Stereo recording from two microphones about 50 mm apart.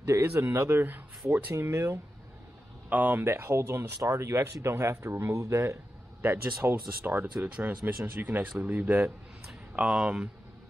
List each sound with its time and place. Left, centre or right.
0.2 s speech: right
1.5 s speech: right
2.9 s speech: right
6.2 s speech: right
9.8 s speech: right